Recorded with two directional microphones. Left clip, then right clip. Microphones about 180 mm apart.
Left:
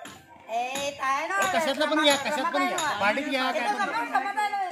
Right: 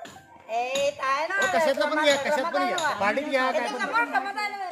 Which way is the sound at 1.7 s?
30° right (ahead or behind).